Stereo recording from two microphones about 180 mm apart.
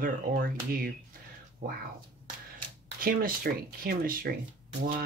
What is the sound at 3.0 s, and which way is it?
Speech, 50° right (ahead or behind).